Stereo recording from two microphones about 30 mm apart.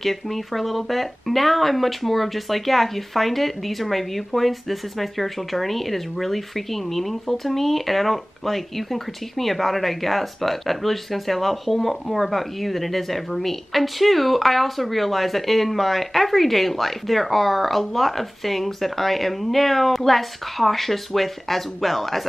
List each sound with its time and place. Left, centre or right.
0.0 s speech: centre